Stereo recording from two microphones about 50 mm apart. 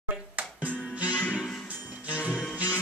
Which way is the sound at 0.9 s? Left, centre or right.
Right.